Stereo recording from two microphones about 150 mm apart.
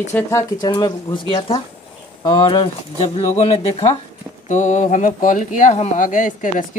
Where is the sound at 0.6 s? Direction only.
25° left (ahead or behind).